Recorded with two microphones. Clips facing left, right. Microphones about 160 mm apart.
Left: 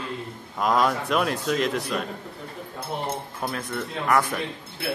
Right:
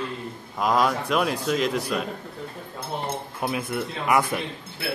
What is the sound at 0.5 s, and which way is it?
Speech, centre (ahead or behind).